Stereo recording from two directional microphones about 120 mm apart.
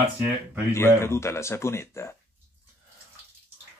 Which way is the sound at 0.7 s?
20° left (ahead or behind).